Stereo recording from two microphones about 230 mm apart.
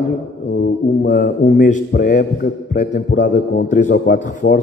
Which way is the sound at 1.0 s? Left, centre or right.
Left.